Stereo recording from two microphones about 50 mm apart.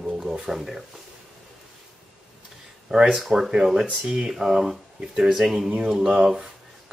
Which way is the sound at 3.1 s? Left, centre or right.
Centre.